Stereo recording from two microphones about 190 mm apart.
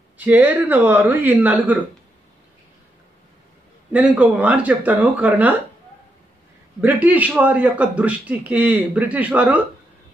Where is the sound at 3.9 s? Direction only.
5° right (ahead or behind).